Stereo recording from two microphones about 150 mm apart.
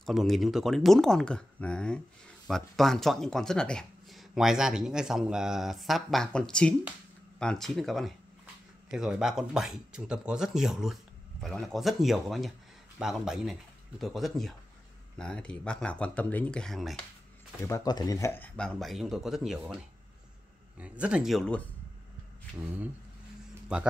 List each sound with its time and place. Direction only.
0.0 s speech: centre (ahead or behind)
17.6 s speech: 20° left (ahead or behind)
18.8 s speech: centre (ahead or behind)
20.8 s speech: 10° right (ahead or behind)